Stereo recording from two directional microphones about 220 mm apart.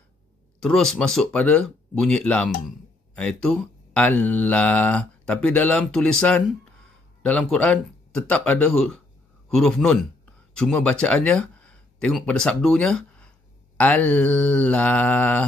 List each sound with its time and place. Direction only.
0.6 s speech: 5° left (ahead or behind)